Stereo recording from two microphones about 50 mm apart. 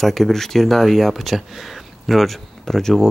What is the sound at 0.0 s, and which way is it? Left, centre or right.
Speech, centre.